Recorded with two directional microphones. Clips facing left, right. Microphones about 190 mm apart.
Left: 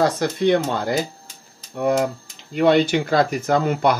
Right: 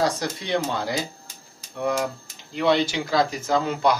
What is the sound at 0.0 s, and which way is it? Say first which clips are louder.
Speech: left 7 dB; 55° left (ahead or behind).